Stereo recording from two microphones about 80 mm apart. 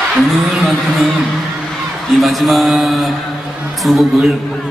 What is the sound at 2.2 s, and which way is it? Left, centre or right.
A man's voice, centre.